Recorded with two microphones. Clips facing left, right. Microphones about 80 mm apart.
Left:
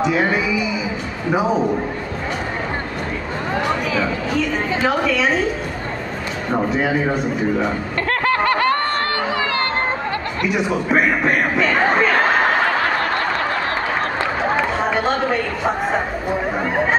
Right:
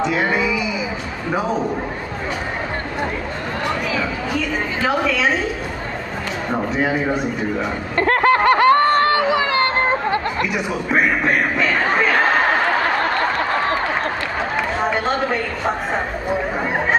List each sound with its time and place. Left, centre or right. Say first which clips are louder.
0.0 s speech: left 1 dB; centre
3.6 s a sound: even; centre
4.8 s speech: even; centre
6.5 s speech: left 2 dB; centre
8.0 s a sound: right 5 dB; right
10.5 s speech: left 6 dB; centre
14.9 s speech: left 1 dB; centre